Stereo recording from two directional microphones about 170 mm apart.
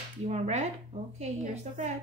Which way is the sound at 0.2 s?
40° right (ahead or behind).